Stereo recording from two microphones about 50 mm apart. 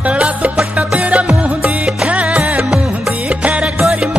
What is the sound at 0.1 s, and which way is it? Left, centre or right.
Music, centre.